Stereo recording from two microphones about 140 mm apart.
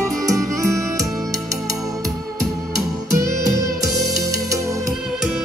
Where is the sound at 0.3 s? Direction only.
20° right (ahead or behind).